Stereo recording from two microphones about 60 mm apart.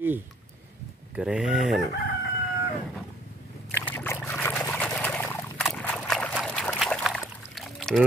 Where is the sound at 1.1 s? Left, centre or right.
Centre.